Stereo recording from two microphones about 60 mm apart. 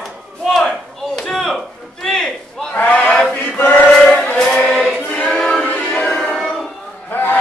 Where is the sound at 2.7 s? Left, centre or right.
Left.